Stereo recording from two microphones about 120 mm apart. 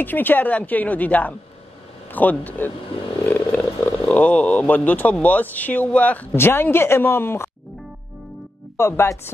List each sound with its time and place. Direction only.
0.0 s speech: 15° left (ahead or behind)
8.7 s speech: 20° left (ahead or behind)